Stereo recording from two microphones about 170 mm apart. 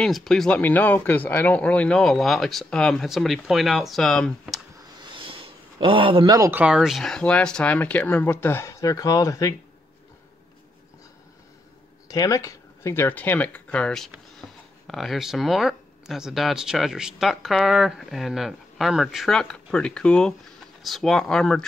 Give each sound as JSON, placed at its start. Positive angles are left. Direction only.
{"t": 0.0, "sound": "speech", "side_deg": 0}
{"t": 5.0, "sound": "a sound", "side_deg": -30}
{"t": 6.5, "sound": "speech", "side_deg": -5}
{"t": 12.1, "sound": "speech", "side_deg": 20}